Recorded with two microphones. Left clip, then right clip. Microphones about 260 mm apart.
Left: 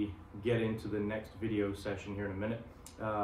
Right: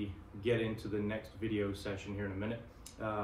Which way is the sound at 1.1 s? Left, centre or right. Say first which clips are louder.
Left 1 dB; centre.